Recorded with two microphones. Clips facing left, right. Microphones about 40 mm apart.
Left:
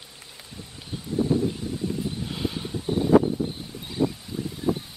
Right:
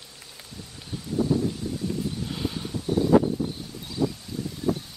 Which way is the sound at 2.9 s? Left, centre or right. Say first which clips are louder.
Left 1 dB; left.